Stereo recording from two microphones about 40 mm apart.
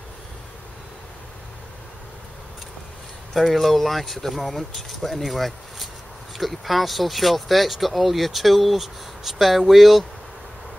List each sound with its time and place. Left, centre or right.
3.3 s speech: centre